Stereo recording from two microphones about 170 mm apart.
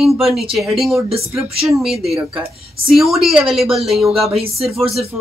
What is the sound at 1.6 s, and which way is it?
Speech, centre (ahead or behind).